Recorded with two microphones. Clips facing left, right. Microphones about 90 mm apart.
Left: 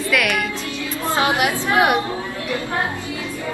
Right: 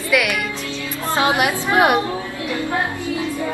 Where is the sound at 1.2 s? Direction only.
20° right (ahead or behind).